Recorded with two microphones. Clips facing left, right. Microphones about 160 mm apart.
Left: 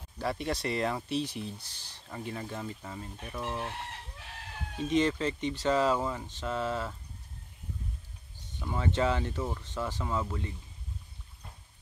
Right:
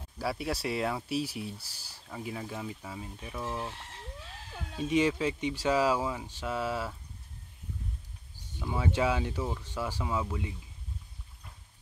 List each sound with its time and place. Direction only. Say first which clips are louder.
0.2 s speech: even; 5° right (ahead or behind)
4.8 s speech: even; 10° right (ahead or behind)
8.5 s speech: right 1 dB; 10° right (ahead or behind)